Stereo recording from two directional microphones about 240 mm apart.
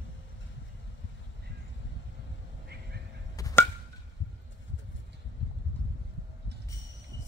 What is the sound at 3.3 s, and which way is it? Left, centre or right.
Chop, centre.